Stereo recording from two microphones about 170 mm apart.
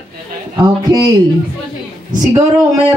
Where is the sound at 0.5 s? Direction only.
25° right (ahead or behind).